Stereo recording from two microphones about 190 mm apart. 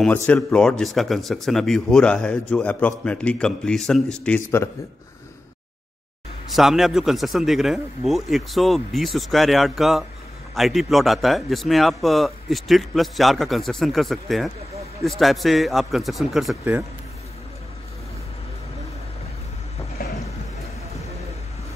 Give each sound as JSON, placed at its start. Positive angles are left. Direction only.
{"t": 0.3, "sound": "speech", "side_deg": 5}
{"t": 6.5, "sound": "speech", "side_deg": 0}
{"t": 20.0, "sound": "a sound", "side_deg": 50}